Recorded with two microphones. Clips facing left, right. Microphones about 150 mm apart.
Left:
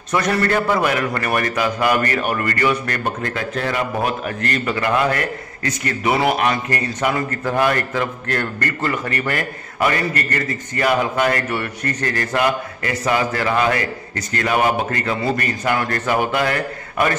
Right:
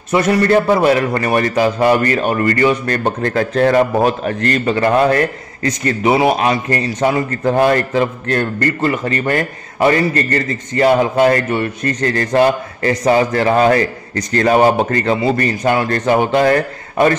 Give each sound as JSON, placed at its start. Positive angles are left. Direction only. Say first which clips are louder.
{"t": 0.1, "sound": "a man's voice", "louder": "right 6 dB", "side_deg": -20}
{"t": 3.3, "sound": "a man's voice", "louder": "right 9 dB", "side_deg": -40}
{"t": 5.9, "sound": "a man's voice", "louder": "right 5 dB", "side_deg": -20}